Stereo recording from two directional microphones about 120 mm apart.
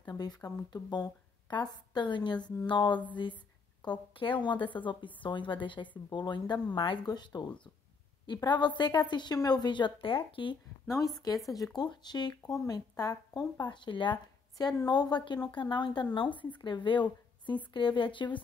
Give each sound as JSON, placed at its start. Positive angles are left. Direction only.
{"t": 0.0, "sound": "speech", "side_deg": 35}
{"t": 10.9, "sound": "a woman's voice", "side_deg": 30}